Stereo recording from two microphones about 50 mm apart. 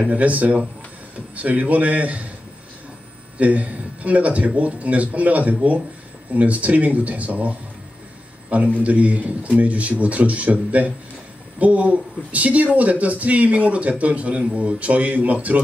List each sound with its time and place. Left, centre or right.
0.1 s speech: right
3.3 s a man's voice: right
8.7 s speech: right